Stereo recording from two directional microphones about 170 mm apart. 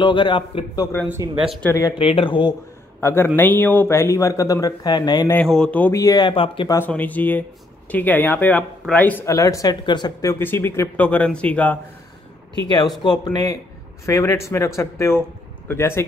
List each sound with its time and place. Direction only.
0.0 s speech: 30° left (ahead or behind)
1.0 s speech: 15° right (ahead or behind)
1.7 s speech: 20° left (ahead or behind)
2.0 s speech: 30° left (ahead or behind)
3.0 s a man's voice: 15° left (ahead or behind)
5.3 s speech: 5° left (ahead or behind); by 6.7 s 30° left (ahead or behind)
6.7 s speech: 10° left (ahead or behind)
10.4 s speech: 10° left (ahead or behind)
13.0 s speech: 25° left (ahead or behind)